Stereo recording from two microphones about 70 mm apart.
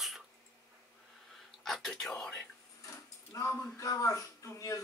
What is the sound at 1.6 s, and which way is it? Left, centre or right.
Speech, centre.